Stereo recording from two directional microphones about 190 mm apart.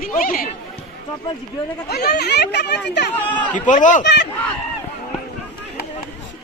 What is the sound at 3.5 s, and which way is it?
Speech, 40° left (ahead or behind).